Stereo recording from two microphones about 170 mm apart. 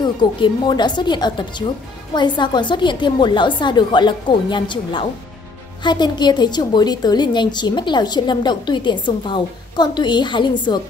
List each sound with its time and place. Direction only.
0.0 s a woman's voice: 25° left (ahead or behind)